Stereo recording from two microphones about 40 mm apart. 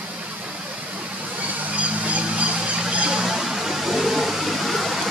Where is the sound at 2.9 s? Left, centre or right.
Right.